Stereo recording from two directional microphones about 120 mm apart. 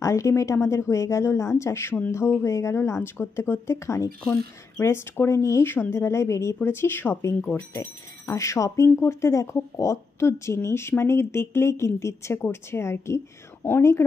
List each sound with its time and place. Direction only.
0.0 s speech: 25° left (ahead or behind)
4.2 s speech: 5° left (ahead or behind)
4.8 s speech: 20° left (ahead or behind)